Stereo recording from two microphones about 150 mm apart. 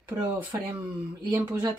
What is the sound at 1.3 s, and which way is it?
Speech, 15° right (ahead or behind).